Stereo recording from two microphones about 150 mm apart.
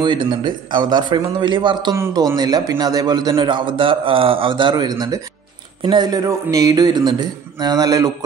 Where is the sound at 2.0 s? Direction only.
20° right (ahead or behind).